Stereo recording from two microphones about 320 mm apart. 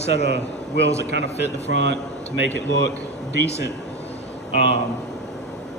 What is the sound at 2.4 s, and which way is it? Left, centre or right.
Speech, left.